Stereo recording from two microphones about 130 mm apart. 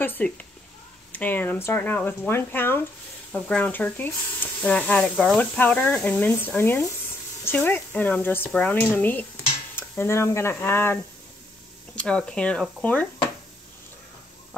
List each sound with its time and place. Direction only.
0.0 s speech: 15° left (ahead or behind)
9.8 s stir: 20° left (ahead or behind)
10.5 s speech: 15° left (ahead or behind)